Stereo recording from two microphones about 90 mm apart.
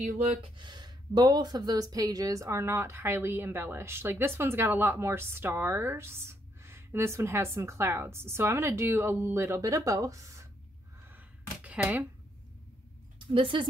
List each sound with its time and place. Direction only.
0.4 s speech: 60° right (ahead or behind); by 10.5 s 35° right (ahead or behind)
11.6 s speech: 15° right (ahead or behind)
13.3 s speech: 70° right (ahead or behind)